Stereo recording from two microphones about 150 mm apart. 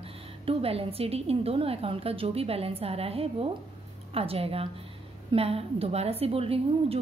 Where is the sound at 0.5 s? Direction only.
40° right (ahead or behind).